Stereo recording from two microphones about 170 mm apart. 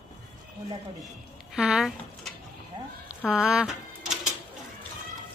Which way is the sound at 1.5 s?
5° right (ahead or behind).